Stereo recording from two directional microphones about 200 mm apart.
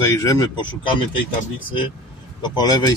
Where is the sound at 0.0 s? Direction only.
15° left (ahead or behind).